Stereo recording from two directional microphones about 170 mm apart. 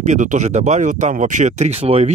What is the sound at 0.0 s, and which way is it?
Speech, 45° right (ahead or behind).